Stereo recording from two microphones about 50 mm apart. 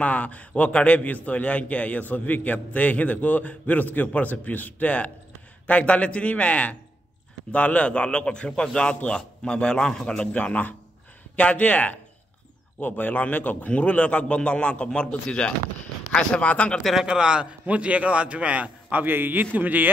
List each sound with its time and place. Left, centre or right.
0.0 s a man's voice: left
10.3 s a man's voice: left
16.9 s a man's voice: centre; by 19.9 s right